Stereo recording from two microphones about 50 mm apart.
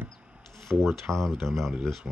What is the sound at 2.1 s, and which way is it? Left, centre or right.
Speech, right.